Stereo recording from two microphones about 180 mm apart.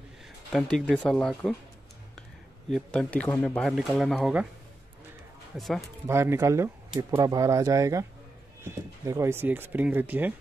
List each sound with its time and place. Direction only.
0.5 s speech: 5° left (ahead or behind)
2.7 s speech: 5° left (ahead or behind)
5.6 s speech: centre (ahead or behind)
6.0 s speech: 15° right (ahead or behind)